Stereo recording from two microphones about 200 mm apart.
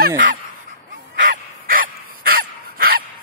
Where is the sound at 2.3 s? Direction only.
50° right (ahead or behind).